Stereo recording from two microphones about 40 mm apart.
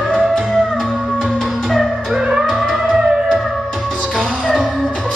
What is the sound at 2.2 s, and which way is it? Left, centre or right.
Music, right.